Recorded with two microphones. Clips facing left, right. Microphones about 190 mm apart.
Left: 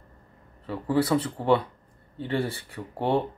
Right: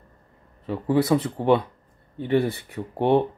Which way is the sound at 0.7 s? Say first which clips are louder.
Right 3 dB; 20° right (ahead or behind).